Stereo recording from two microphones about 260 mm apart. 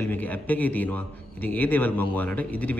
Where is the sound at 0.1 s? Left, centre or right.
Centre.